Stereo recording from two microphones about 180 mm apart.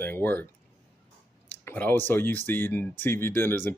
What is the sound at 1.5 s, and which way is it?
Speech, 10° left (ahead or behind).